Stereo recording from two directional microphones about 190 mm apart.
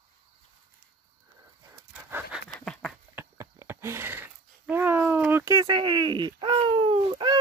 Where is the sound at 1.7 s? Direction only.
10° right (ahead or behind).